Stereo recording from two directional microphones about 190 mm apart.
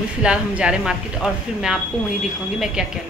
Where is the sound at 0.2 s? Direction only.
5° right (ahead or behind).